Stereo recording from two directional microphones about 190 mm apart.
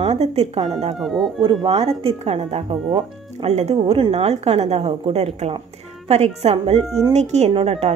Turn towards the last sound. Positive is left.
turn(degrees=-30)  # may be behind; listen again after turning